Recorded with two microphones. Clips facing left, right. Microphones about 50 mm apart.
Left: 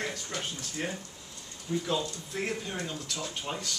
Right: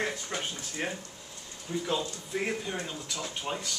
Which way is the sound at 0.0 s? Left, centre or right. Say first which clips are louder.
Right 2 dB; centre.